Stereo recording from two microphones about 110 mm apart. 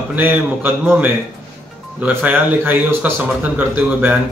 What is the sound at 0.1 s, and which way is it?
Speech, 15° right (ahead or behind).